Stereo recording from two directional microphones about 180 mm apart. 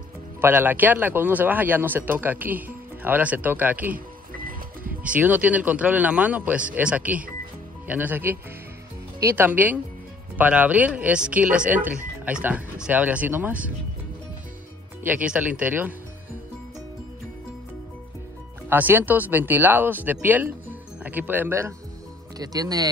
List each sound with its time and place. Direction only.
0.4 s speech: 10° right (ahead or behind)
3.9 s music: 50° right (ahead or behind)
5.0 s speech: 10° right (ahead or behind)
15.0 s speech: 10° right (ahead or behind)
18.7 s speech: 10° right (ahead or behind)